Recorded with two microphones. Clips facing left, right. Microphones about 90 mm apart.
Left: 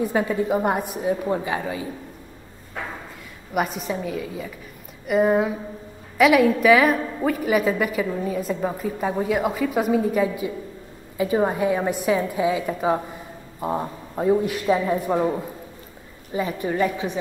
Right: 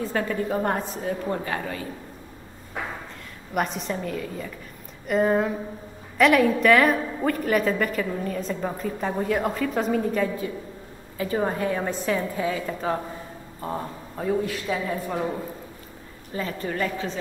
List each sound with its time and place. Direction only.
0.0 s a woman's voice: 15° left (ahead or behind)
3.5 s a woman's voice: 5° left (ahead or behind)